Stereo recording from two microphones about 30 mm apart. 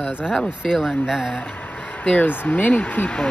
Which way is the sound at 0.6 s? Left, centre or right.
Centre.